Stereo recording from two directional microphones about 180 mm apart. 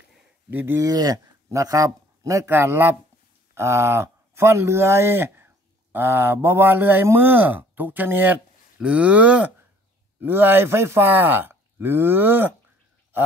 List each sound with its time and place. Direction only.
0.1 s speech: 10° right (ahead or behind)